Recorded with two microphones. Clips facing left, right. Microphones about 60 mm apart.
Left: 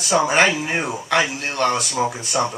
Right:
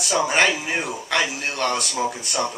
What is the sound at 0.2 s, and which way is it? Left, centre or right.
Speech, centre.